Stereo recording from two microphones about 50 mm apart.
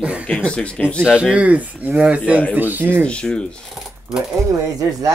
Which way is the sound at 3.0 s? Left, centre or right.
Centre.